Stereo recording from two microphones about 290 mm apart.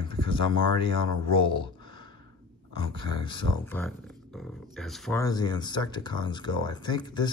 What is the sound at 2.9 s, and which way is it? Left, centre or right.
Speech, centre.